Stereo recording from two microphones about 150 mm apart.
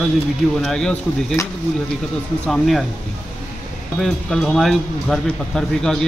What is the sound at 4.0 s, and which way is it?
Speech, 5° left (ahead or behind).